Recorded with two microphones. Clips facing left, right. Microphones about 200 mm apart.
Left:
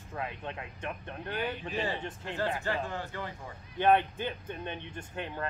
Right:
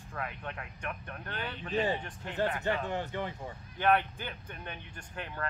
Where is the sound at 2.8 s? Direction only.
20° right (ahead or behind).